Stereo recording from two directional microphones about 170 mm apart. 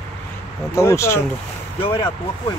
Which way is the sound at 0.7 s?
15° left (ahead or behind).